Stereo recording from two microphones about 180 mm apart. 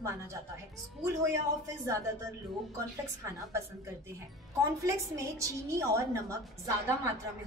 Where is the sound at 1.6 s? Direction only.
15° right (ahead or behind).